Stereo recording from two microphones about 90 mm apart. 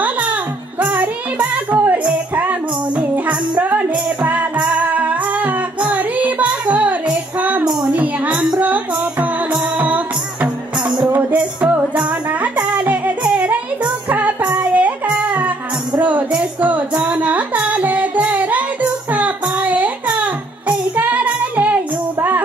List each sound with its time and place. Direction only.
0.0 s music: 15° right (ahead or behind)
13.3 s child singing: 15° right (ahead or behind)
16.0 s music: 15° right (ahead or behind)